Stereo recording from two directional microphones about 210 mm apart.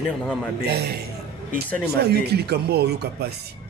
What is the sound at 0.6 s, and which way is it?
Speech, 50° right (ahead or behind).